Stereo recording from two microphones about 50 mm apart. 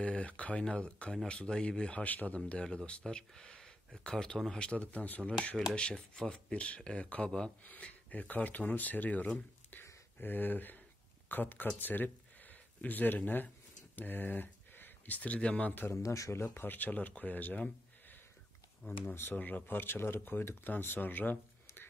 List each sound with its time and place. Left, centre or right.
0.0 s speech: left
2.6 s speech: centre
15.9 s speech: left
16.5 s speech: left
19.3 s speech: left